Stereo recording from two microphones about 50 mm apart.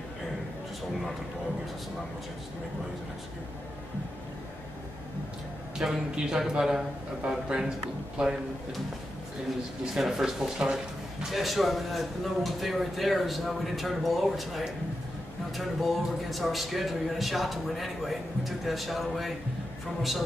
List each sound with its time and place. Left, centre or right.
5.8 s speech: centre
9.9 s a man's voice: centre